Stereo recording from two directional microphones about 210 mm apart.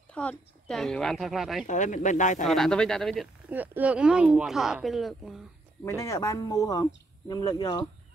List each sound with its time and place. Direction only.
0.1 s speech: 5° left (ahead or behind)
1.7 s speech: 35° left (ahead or behind)
2.4 s speech: centre (ahead or behind)
5.9 s speech: 15° left (ahead or behind)